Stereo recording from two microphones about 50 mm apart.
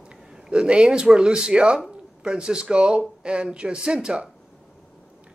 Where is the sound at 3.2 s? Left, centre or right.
Right.